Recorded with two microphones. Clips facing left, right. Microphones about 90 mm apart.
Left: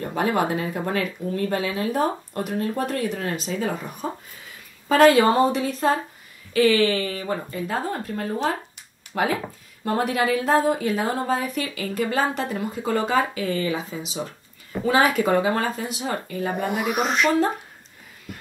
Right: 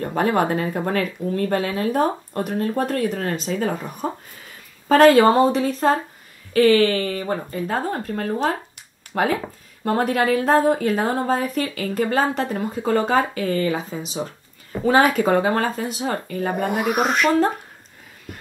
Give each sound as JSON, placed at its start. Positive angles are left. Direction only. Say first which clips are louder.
{"t": 0.0, "sound": "speech", "louder": "right 3 dB", "side_deg": -40}